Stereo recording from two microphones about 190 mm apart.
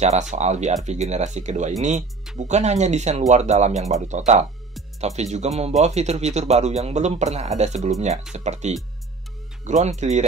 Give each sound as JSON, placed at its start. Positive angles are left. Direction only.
{"t": 0.0, "sound": "speech", "side_deg": -35}